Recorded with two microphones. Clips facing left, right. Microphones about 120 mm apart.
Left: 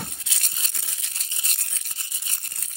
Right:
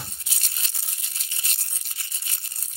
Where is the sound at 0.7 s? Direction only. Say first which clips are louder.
Left 2 dB; 60° left (ahead or behind).